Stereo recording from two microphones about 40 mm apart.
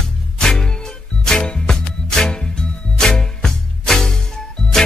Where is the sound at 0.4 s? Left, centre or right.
Centre.